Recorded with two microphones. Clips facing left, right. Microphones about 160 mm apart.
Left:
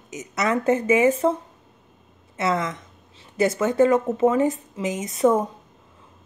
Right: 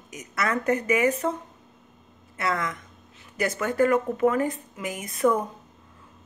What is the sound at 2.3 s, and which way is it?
A woman's voice, 25° left (ahead or behind).